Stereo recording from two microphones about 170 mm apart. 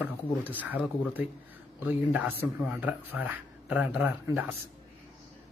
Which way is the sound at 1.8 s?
10° right (ahead or behind).